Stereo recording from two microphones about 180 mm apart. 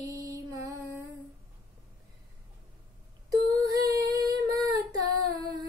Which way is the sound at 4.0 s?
20° right (ahead or behind).